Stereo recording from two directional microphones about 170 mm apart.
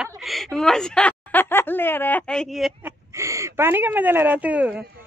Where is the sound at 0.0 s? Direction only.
Centre (ahead or behind).